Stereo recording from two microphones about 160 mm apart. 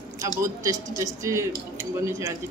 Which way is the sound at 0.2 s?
20° right (ahead or behind).